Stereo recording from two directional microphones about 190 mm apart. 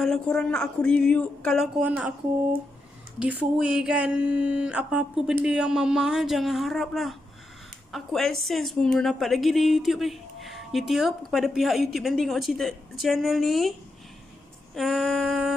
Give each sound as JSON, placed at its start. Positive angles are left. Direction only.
{"t": 0.0, "sound": "a woman's voice", "side_deg": 0}
{"t": 3.2, "sound": "a woman's voice", "side_deg": -5}
{"t": 14.8, "sound": "a woman's voice", "side_deg": 0}